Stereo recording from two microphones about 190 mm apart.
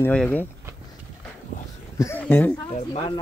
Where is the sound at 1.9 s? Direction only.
15° left (ahead or behind).